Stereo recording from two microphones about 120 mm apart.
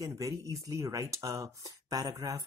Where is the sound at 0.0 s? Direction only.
30° right (ahead or behind).